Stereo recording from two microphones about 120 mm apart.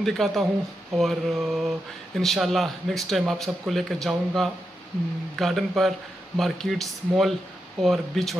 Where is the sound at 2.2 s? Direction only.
Centre (ahead or behind).